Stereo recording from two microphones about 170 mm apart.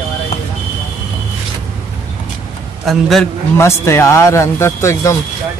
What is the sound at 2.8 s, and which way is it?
Speech, centre (ahead or behind).